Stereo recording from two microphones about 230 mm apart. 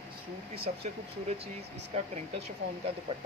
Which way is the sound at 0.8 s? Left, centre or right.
Right.